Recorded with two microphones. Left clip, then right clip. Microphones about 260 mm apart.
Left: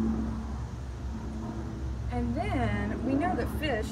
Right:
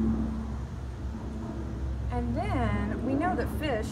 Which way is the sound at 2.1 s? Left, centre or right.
Centre.